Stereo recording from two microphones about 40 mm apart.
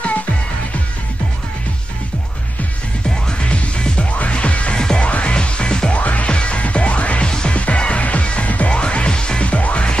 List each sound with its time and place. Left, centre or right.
3.4 s music: left
4.7 s music: left
5.9 s music: left
7.2 s music: left
7.5 s music: left